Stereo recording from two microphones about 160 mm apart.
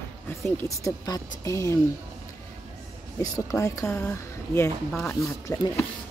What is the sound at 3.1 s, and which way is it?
Speech, 20° left (ahead or behind).